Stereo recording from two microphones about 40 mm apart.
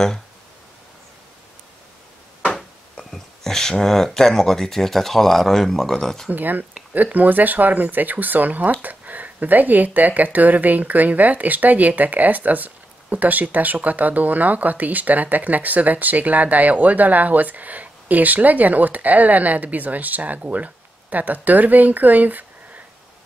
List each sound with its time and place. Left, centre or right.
3.1 s speech: centre
6.3 s speech: right